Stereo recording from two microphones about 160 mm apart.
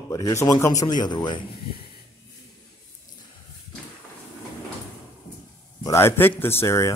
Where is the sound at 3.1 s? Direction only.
55° left (ahead or behind).